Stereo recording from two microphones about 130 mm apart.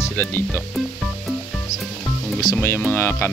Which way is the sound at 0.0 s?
15° left (ahead or behind).